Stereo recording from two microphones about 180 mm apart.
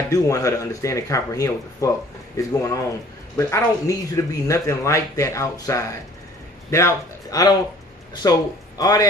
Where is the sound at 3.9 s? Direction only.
15° left (ahead or behind).